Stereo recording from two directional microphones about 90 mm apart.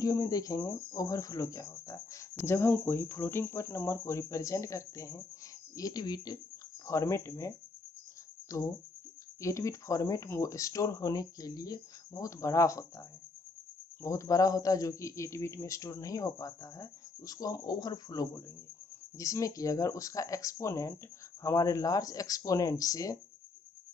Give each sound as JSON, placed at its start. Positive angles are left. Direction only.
{"t": 0.0, "sound": "speech", "side_deg": 40}
{"t": 6.9, "sound": "speech", "side_deg": 35}
{"t": 14.0, "sound": "speech", "side_deg": 35}